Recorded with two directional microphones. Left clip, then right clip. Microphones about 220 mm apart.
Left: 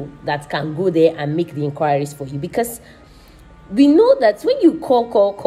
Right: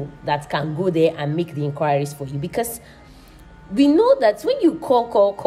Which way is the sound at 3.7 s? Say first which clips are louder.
Left 3 dB; 15° right (ahead or behind).